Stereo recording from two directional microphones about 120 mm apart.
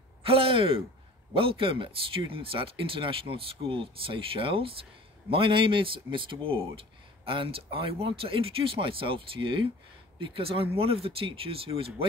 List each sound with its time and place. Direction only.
0.2 s speech: 50° right (ahead or behind)